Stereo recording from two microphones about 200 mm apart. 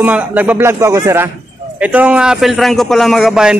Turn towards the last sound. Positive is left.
turn(degrees=0)  # may be behind; listen again after turning